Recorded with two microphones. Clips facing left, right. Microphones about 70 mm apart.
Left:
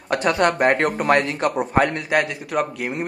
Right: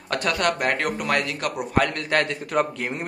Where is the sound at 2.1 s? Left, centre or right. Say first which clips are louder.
Left 2 dB; centre.